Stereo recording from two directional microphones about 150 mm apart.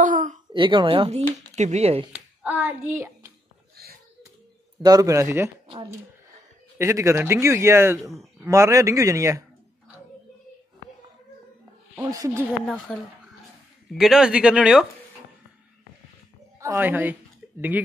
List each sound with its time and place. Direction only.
0.0 s a sound: 60° right (ahead or behind)
0.5 s speech: 30° right (ahead or behind)
1.3 s speech: 50° right (ahead or behind)
2.1 s speech: 10° right (ahead or behind)
4.8 s a man's voice: 25° right (ahead or behind)
6.8 s a man's voice: 20° right (ahead or behind)
12.1 s a man's voice: 25° right (ahead or behind)
12.6 s speech: centre (ahead or behind)
16.5 s a woman's voice: 20° right (ahead or behind)